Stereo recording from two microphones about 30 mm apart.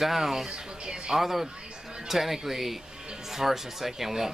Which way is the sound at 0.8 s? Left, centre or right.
Right.